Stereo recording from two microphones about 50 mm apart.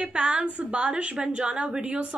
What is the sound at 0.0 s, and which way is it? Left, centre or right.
A woman's voice, right.